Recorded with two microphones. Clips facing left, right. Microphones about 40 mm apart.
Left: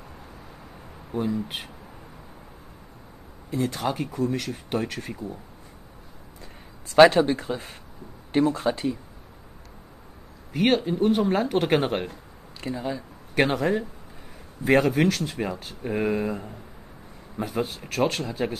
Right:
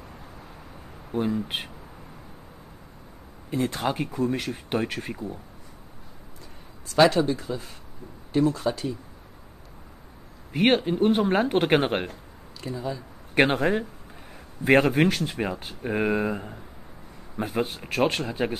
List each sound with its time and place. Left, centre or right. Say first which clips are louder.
1.2 s speech: right 1 dB; right
3.4 s speech: even; right
7.0 s speech: left 4 dB; left
10.5 s speech: right 1 dB; right
12.5 s speech: left 2 dB; left
13.3 s a man's voice: right 1 dB; right
14.9 s speech: even; centre